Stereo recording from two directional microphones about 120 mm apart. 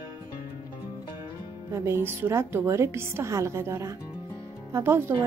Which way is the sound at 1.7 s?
20° right (ahead or behind).